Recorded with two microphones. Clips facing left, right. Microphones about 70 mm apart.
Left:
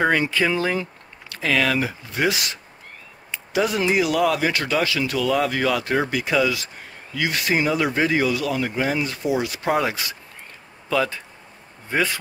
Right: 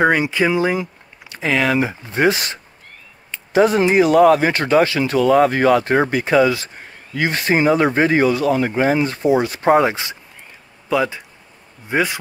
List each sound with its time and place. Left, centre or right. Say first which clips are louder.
0.0 s speech: right 4 dB; centre
10.9 s speech: right 3 dB; centre